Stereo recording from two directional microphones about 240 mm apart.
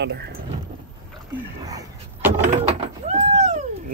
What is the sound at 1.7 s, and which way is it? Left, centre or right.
Vehicle, centre.